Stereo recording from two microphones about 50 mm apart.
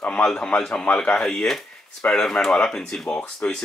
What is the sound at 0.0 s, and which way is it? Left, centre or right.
A man's voice, left.